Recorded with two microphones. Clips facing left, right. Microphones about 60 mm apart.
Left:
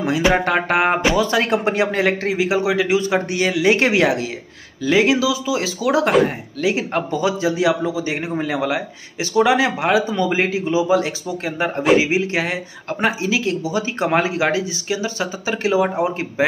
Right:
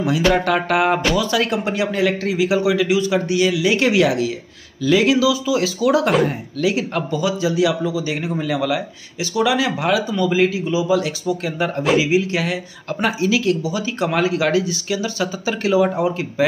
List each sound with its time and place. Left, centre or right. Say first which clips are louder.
0.2 s speech: left 1 dB; left